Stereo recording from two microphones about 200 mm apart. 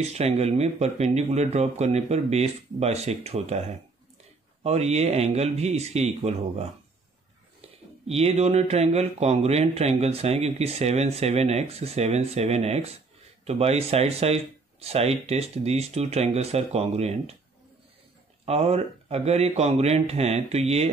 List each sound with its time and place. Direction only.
0.0 s speech: 30° right (ahead or behind)
8.1 s speech: 30° right (ahead or behind)
18.4 s speech: 30° right (ahead or behind)